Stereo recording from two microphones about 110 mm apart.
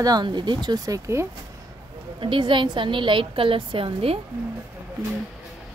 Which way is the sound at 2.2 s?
50° right (ahead or behind).